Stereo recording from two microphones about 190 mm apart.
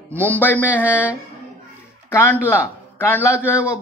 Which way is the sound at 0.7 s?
10° right (ahead or behind).